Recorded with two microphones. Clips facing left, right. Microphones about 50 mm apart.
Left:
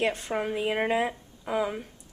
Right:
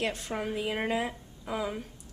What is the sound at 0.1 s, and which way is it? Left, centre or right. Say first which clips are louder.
Speech: left 4 dB; centre.